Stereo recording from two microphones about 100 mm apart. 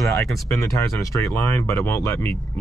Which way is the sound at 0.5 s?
30° left (ahead or behind).